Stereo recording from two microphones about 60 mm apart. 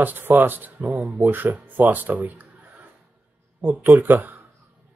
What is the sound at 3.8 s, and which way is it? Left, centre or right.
Speech, right.